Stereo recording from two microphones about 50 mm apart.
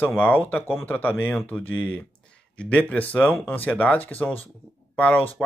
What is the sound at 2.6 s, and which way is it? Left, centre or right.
Speech, left.